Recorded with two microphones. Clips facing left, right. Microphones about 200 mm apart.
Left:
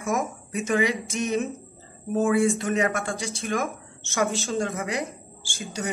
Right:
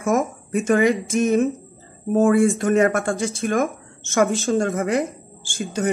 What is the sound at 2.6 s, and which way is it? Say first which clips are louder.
Speech: right 7 dB; 50° right (ahead or behind).